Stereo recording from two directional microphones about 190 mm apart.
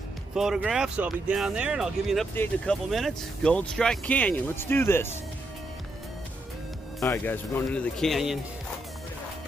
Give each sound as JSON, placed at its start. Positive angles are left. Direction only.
{"t": 0.3, "sound": "speech", "side_deg": 0}
{"t": 7.0, "sound": "speech", "side_deg": 10}